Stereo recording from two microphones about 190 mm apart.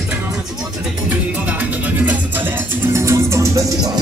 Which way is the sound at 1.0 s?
5° right (ahead or behind).